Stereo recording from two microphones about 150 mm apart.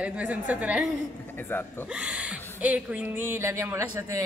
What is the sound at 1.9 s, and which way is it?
A woman's voice, 5° right (ahead or behind).